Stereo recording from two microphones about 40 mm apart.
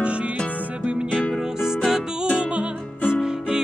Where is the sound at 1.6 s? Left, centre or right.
Centre.